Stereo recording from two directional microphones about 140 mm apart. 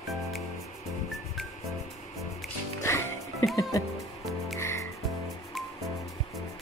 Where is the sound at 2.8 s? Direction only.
20° left (ahead or behind).